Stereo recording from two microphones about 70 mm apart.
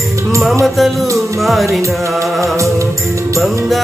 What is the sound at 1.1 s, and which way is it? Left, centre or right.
Music, centre.